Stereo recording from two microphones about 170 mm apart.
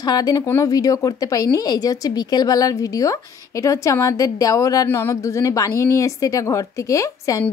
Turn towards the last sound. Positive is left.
turn(degrees=20)  # may be behind; listen again after turning